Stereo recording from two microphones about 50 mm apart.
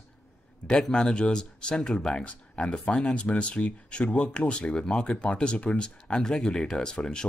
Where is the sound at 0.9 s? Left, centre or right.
Centre.